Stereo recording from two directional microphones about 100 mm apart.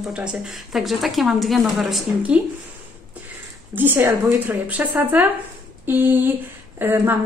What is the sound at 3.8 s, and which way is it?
A woman's voice, 20° right (ahead or behind).